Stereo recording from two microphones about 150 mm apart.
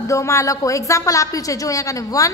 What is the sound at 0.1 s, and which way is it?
A woman's voice, 20° left (ahead or behind).